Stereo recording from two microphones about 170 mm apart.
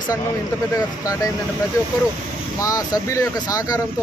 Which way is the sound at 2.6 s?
20° left (ahead or behind).